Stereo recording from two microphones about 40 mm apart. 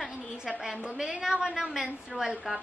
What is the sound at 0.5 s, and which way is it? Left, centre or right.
A woman's voice, centre.